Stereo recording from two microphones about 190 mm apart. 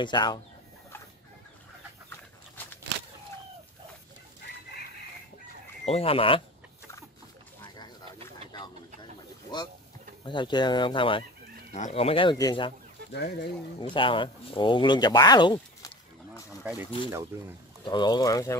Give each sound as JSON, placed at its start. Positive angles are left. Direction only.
{"t": 0.0, "sound": "speech", "side_deg": 25}
{"t": 5.9, "sound": "speech", "side_deg": 30}
{"t": 10.2, "sound": "speech", "side_deg": 25}
{"t": 13.1, "sound": "speech", "side_deg": 65}
{"t": 13.7, "sound": "speech", "side_deg": 25}
{"t": 16.6, "sound": "speech", "side_deg": -10}
{"t": 17.8, "sound": "speech", "side_deg": 25}